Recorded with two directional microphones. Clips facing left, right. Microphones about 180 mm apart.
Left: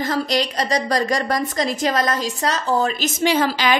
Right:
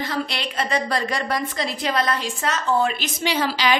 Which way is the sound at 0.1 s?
40° left (ahead or behind).